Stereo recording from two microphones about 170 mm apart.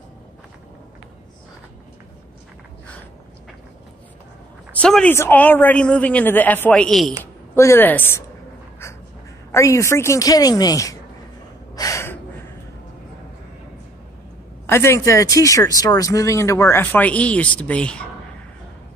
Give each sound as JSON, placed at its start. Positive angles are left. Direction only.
{"t": 4.7, "sound": "speech", "side_deg": 5}
{"t": 7.5, "sound": "speech", "side_deg": 15}
{"t": 9.5, "sound": "a woman's voice", "side_deg": 15}
{"t": 11.7, "sound": "gasp", "side_deg": 20}
{"t": 14.7, "sound": "speech", "side_deg": 15}